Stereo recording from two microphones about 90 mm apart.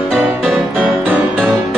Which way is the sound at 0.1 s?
Centre (ahead or behind).